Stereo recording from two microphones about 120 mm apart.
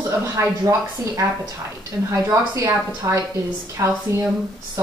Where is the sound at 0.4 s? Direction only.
25° right (ahead or behind).